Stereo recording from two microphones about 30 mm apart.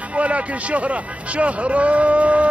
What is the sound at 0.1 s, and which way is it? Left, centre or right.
A man's voice, right.